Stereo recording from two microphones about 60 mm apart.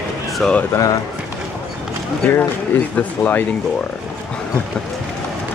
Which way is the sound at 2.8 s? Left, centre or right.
Left.